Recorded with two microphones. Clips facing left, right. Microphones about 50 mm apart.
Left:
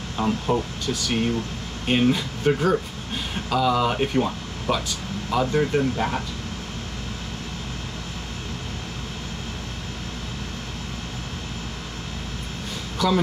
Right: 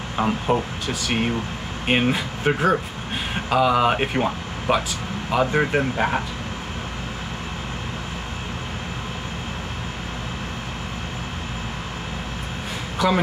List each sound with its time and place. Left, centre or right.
0.2 s speech: right
13.0 s speech: centre